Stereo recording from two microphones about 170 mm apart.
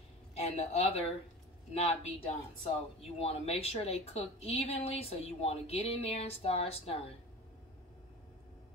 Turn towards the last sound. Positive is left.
turn(degrees=35)  # may be behind; listen again after turning